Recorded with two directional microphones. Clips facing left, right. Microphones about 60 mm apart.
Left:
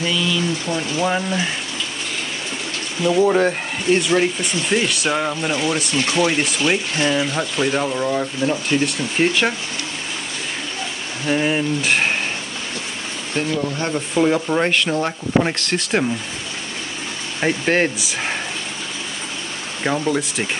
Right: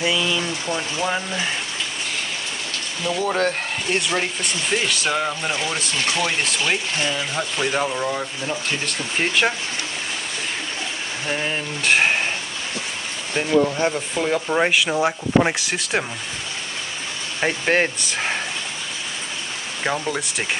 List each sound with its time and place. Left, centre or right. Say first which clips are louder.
0.0 s speech: left 1 dB; centre
1.0 s speech: left 4 dB; centre
3.0 s speech: left 6 dB; centre
7.5 s speech: left 2 dB; centre
11.2 s speech: left 7 dB; centre
11.9 s a sound: right 4 dB; centre
13.4 s speech: right 4 dB; centre
13.9 s speech: left 5 dB; centre
14.5 s speech: left 1 dB; centre
17.4 s speech: left 2 dB; centre
19.8 s speech: left 4 dB; centre